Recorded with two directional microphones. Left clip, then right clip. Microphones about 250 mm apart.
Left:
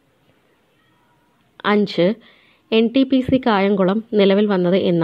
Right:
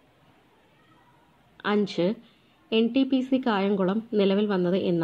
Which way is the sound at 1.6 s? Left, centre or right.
Left.